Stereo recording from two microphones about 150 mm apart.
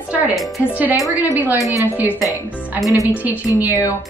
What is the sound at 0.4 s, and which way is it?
Speech, centre (ahead or behind).